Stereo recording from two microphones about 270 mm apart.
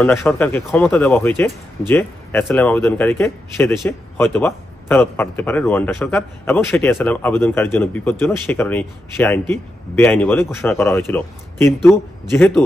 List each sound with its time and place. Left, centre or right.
0.0 s a man's voice: centre